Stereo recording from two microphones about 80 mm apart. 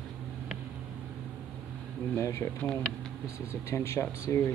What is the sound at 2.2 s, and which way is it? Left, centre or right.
Speech, left.